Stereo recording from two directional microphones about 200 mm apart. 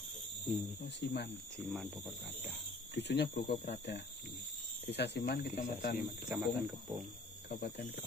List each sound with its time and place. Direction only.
0.8 s speech: 55° left (ahead or behind)
1.7 s speech: centre (ahead or behind)
2.9 s speech: 60° left (ahead or behind)
6.2 s speech: 5° right (ahead or behind)
7.4 s speech: 55° left (ahead or behind)